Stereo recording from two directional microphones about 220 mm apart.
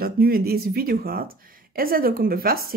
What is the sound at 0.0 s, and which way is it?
Speech, 45° right (ahead or behind).